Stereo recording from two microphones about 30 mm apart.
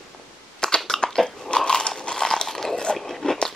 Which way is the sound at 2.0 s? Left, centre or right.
Left.